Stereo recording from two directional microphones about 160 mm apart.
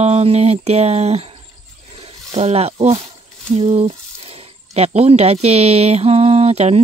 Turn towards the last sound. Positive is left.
turn(degrees=-40)  # may be behind; listen again after turning